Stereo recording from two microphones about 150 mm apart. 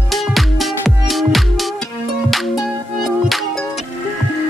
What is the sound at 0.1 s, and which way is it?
Music, centre (ahead or behind).